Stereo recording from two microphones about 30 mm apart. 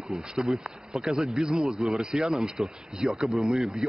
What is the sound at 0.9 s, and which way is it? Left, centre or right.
Speech, right.